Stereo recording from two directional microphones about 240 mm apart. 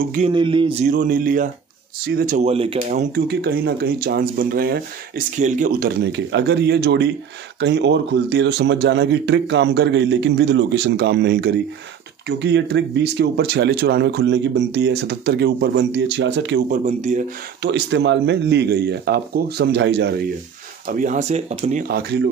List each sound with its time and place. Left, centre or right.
0.3 s a sound: centre
0.8 s speech: right
17.6 s speech: right
20.8 s speech: right